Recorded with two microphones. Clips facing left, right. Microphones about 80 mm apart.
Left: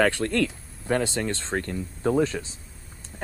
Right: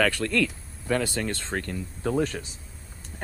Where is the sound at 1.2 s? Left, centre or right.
Left.